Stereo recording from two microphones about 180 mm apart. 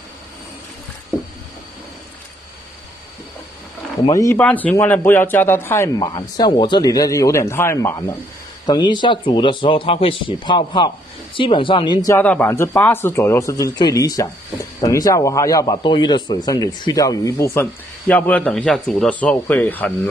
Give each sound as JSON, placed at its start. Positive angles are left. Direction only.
{"t": 4.1, "sound": "speech", "side_deg": 20}
{"t": 4.4, "sound": "a man's voice", "side_deg": 10}